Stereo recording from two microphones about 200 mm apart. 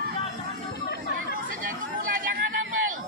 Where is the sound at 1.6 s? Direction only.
45° right (ahead or behind).